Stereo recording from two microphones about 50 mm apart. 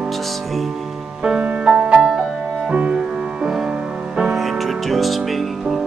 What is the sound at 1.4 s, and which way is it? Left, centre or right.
Music, right.